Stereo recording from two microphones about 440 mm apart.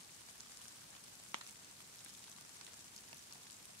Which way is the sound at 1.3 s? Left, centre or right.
Right.